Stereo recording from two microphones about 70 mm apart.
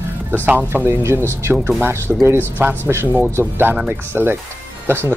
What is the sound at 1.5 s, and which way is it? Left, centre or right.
Speech, right.